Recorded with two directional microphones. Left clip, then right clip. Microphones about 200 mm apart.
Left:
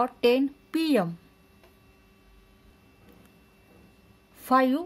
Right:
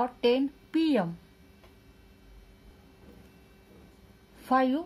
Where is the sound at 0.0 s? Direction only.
55° left (ahead or behind).